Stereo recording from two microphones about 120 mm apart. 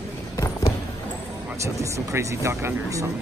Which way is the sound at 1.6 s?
25° right (ahead or behind).